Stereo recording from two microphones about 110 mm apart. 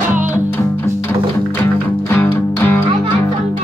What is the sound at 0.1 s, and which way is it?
Music, 15° right (ahead or behind).